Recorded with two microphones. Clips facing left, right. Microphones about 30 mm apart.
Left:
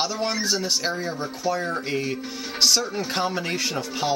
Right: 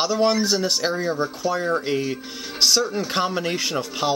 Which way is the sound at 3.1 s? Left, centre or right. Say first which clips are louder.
Right 2 dB; centre.